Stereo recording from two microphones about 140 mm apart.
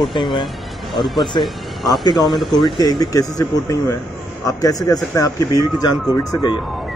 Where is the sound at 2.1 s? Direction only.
Centre (ahead or behind).